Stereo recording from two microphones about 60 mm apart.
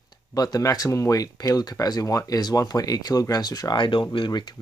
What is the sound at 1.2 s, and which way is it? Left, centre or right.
Speech, left.